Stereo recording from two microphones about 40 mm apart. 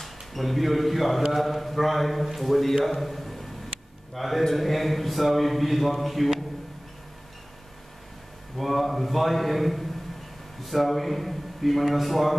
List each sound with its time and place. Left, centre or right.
0.0 s a man's voice: centre
8.5 s a man's voice: centre